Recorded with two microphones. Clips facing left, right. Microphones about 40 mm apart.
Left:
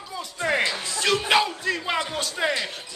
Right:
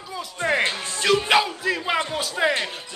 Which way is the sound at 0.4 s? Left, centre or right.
Right.